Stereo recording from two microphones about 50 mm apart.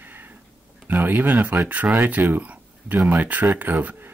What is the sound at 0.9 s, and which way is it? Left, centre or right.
Speech, right.